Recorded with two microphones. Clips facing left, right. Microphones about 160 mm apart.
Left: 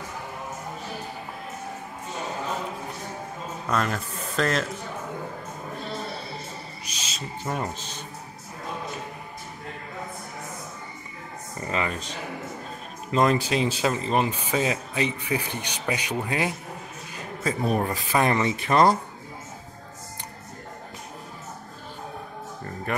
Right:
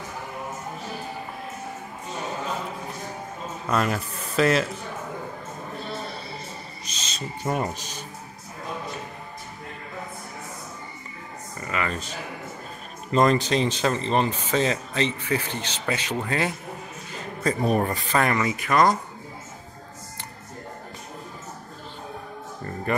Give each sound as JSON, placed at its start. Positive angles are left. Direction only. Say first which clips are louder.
{"t": 3.6, "sound": "speech", "louder": "right 2 dB", "side_deg": -5}
{"t": 6.9, "sound": "owl", "louder": "even", "side_deg": 10}
{"t": 7.4, "sound": "speech", "louder": "right 4 dB", "side_deg": -10}
{"t": 11.6, "sound": "speech", "louder": "left 1 dB", "side_deg": 25}
{"t": 11.9, "sound": "speech", "louder": "even", "side_deg": -5}
{"t": 17.4, "sound": "speech", "louder": "right 2 dB", "side_deg": 0}
{"t": 18.1, "sound": "speech", "louder": "left 1 dB", "side_deg": 25}
{"t": 22.9, "sound": "speech", "louder": "right 3 dB", "side_deg": 0}